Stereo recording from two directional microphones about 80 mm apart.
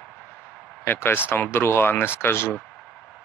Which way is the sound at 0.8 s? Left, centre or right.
Left.